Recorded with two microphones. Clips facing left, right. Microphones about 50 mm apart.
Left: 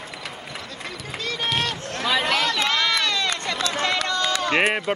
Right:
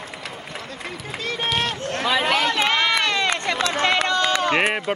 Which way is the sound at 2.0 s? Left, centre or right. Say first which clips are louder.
Right 2 dB; centre.